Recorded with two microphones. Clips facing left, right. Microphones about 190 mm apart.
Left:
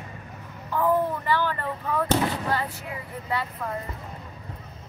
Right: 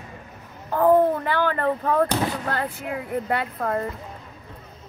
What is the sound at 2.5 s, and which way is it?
Speech, 55° right (ahead or behind).